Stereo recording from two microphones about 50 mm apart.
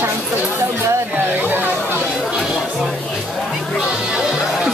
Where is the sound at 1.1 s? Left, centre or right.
Right.